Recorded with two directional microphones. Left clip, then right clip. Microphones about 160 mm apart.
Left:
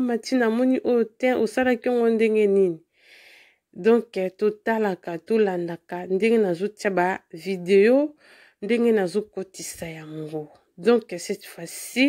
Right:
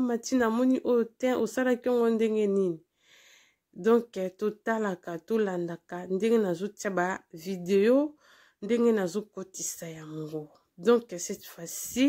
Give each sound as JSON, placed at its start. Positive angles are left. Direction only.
{"t": 0.0, "sound": "speech", "side_deg": 20}
{"t": 3.8, "sound": "speech", "side_deg": 20}